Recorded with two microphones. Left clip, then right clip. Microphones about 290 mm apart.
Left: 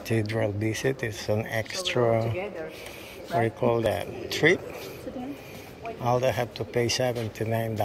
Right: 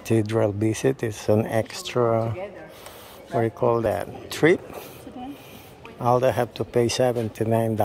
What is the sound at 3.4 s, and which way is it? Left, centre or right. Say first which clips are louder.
Speech: right 4 dB; centre.